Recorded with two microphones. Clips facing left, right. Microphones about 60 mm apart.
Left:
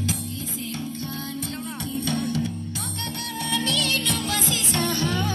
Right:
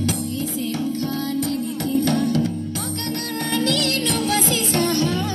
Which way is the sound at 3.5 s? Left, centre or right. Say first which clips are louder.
Right 4 dB; right.